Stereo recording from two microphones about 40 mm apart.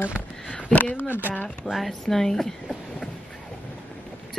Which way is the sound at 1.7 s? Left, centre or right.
Centre.